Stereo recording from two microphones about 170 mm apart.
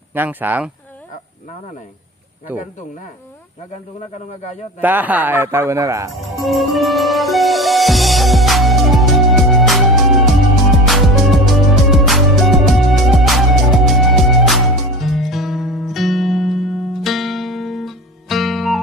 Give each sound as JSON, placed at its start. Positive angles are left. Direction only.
{"t": 0.1, "sound": "a man's voice", "side_deg": -10}
{"t": 2.5, "sound": "a man's voice", "side_deg": -10}
{"t": 4.4, "sound": "speech", "side_deg": 45}
{"t": 4.8, "sound": "a man's voice", "side_deg": -10}
{"t": 6.3, "sound": "music", "side_deg": 0}